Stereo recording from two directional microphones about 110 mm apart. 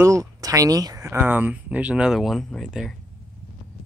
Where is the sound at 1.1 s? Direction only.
15° right (ahead or behind); by 2.9 s centre (ahead or behind).